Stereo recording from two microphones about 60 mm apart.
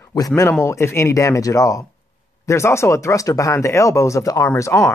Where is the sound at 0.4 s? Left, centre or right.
Left.